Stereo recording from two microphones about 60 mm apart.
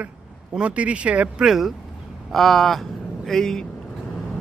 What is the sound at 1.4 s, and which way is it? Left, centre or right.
Speech, centre.